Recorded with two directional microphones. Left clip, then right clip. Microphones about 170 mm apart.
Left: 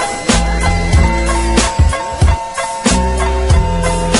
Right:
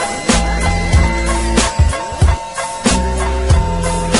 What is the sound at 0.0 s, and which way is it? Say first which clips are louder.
Music: left 1 dB; centre (ahead or behind).